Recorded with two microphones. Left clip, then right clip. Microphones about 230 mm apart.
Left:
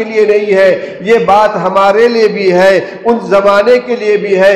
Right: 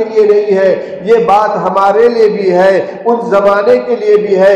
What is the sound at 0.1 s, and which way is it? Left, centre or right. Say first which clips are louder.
A man's voice: left 1 dB; left.